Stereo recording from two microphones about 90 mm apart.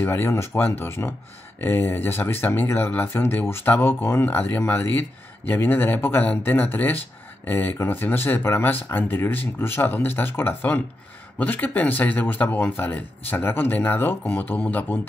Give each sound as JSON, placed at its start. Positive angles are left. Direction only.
{"t": 0.0, "sound": "speech", "side_deg": 30}